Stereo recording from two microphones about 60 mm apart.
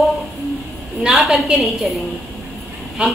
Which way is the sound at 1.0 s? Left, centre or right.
Centre.